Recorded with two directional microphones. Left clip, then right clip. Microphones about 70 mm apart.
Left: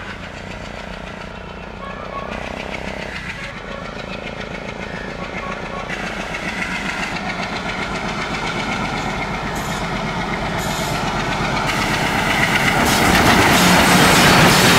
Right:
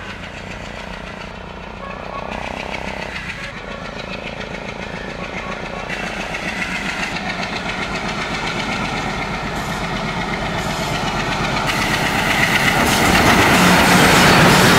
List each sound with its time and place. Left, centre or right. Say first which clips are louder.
5.9 s vehicle: right 2 dB; centre
13.7 s train: right 1 dB; centre; by 14.8 s left